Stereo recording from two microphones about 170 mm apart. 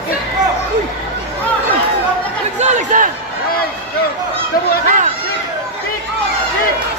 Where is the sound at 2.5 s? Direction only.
45° right (ahead or behind).